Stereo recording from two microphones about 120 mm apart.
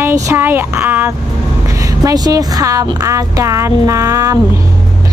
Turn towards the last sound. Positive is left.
turn(degrees=-25)  # may be behind; listen again after turning